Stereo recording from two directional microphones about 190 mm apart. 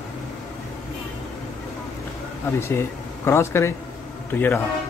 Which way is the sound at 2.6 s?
15° left (ahead or behind).